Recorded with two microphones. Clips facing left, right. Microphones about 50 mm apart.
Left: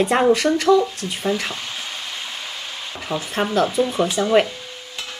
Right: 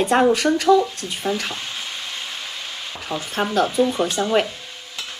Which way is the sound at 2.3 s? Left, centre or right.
Centre.